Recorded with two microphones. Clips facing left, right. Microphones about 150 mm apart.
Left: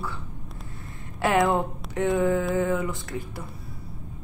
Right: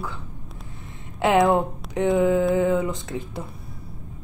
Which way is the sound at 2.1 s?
15° right (ahead or behind).